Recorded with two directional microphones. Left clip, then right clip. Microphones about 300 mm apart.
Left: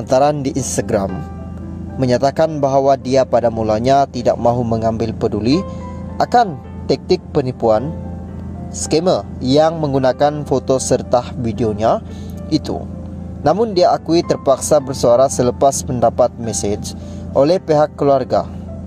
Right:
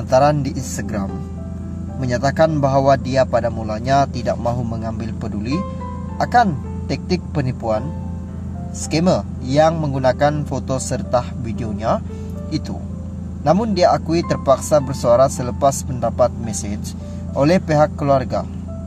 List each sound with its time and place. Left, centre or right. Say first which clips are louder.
0.1 s speech: left 1 dB; left
8.9 s speech: left 3 dB; left